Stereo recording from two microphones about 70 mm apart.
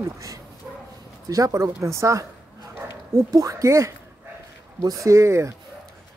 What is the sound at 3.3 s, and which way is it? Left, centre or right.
Speech, right.